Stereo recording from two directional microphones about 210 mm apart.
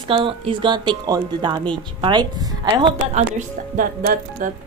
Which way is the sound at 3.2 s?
35° right (ahead or behind).